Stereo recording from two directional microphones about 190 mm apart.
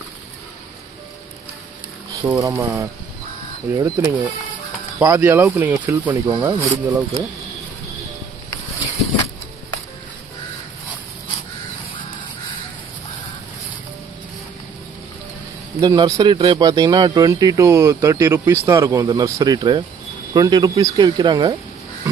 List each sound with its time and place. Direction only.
2.2 s speech: 15° right (ahead or behind)
15.7 s speech: 20° right (ahead or behind)